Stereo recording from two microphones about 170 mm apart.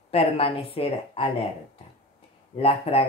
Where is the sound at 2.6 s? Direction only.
35° left (ahead or behind).